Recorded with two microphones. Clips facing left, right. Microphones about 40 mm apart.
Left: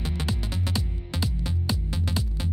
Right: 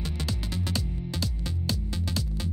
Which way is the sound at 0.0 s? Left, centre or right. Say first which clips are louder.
Left 2 dB; left.